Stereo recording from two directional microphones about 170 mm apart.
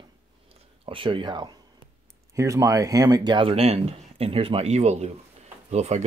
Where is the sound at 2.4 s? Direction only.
20° right (ahead or behind).